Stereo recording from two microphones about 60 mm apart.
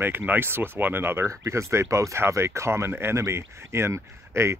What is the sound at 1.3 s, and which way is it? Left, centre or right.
Speech, right.